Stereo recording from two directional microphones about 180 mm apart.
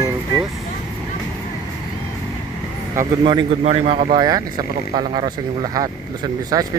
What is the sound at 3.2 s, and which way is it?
Speech, 25° right (ahead or behind).